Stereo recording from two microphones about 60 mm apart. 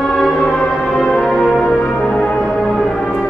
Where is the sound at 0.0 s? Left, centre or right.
Centre.